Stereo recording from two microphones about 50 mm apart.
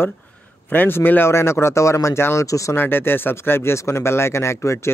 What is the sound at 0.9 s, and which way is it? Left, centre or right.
Speech, left.